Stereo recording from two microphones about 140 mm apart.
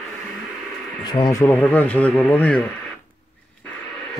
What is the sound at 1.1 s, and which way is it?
Speech, 30° left (ahead or behind).